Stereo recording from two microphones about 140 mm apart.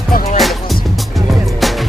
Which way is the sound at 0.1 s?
90° left.